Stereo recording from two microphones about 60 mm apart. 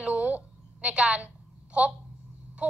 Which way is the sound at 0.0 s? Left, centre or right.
Right.